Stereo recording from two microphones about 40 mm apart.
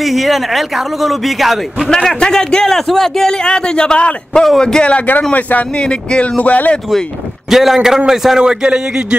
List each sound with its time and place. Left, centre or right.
0.0 s a man's voice: centre
2.0 s speech: centre
3.4 s a man's voice: left
5.3 s speech: left
5.8 s speech: left
7.4 s a man's voice: centre
8.4 s speech: centre